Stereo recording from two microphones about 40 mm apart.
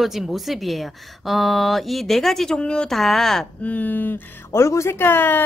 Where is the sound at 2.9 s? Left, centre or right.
Centre.